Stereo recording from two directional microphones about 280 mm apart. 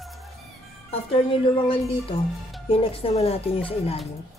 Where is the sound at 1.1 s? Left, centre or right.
Centre.